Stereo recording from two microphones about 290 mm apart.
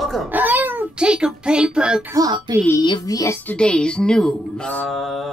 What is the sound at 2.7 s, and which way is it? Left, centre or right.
Speech, centre.